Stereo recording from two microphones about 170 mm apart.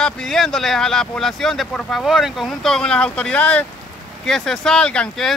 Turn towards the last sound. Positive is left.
turn(degrees=5)  # may be behind; listen again after turning